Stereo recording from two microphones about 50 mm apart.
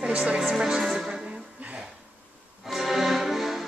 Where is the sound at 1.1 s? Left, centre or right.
Right.